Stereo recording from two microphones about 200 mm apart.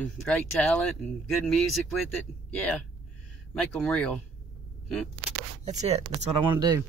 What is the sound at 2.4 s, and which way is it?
Speech, 5° left (ahead or behind).